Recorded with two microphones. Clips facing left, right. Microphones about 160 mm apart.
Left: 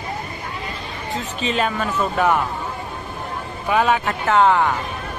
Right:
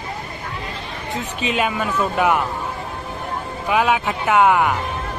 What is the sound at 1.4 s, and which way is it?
Speech, 10° right (ahead or behind).